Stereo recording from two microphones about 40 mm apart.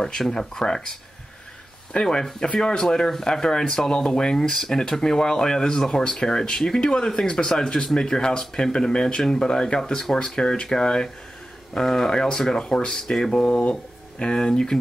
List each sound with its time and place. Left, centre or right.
0.3 s speech: centre
2.0 s speech: left
11.7 s speech: centre
12.1 s speech: centre